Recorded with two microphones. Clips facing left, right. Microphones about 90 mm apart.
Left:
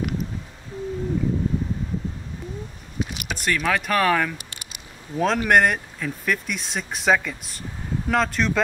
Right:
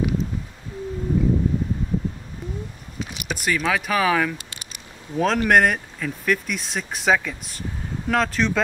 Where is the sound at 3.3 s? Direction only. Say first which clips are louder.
Right 1 dB; 5° right (ahead or behind).